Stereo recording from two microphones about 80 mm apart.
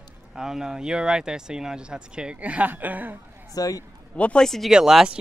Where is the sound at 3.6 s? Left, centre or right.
Left.